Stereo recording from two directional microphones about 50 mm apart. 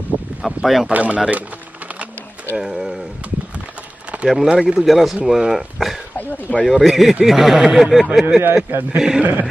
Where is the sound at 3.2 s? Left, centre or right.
Right.